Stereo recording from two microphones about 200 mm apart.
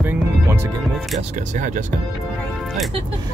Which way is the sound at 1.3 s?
40° right (ahead or behind).